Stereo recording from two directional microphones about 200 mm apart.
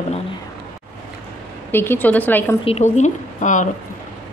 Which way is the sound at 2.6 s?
35° left (ahead or behind).